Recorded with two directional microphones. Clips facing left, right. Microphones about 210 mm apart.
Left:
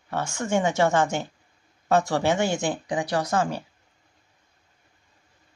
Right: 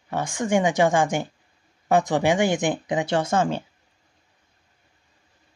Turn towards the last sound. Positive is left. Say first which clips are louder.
# right 3 dB
turn(degrees=-25)  # may be behind; listen again after turning